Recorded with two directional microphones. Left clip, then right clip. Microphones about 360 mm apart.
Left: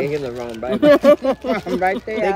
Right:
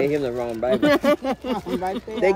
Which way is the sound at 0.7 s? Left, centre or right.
Centre.